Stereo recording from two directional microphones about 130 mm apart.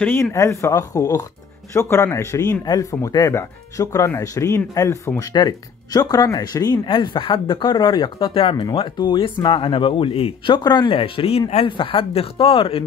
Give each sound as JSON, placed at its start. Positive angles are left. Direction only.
{"t": 0.0, "sound": "speech", "side_deg": 20}